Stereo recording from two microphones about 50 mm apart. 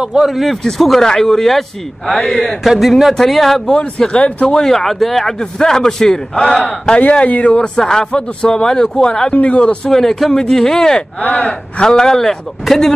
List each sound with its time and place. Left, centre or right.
0.0 s speech: centre
0.3 s a man's voice: centre
2.6 s a man's voice: centre
3.6 s speech: centre
4.6 s a man's voice: centre
7.0 s a man's voice: left
9.3 s a man's voice: left
9.8 s a man's voice: centre
11.1 s speech: left
11.9 s a man's voice: centre